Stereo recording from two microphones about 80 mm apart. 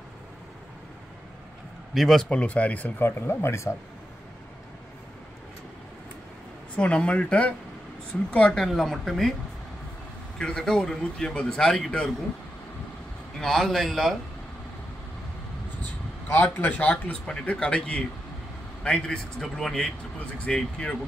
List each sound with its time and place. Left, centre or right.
2.0 s a woman's voice: centre
2.2 s speech: centre; by 3.7 s left
6.8 s speech: centre
8.5 s a woman's voice: centre
10.4 s speech: centre
13.4 s a woman's voice: centre
16.3 s speech: left
16.9 s speech: centre